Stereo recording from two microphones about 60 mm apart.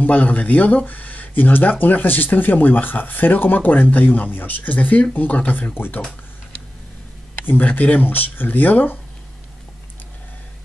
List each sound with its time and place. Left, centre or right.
0.0 s speech: left
7.4 s speech: left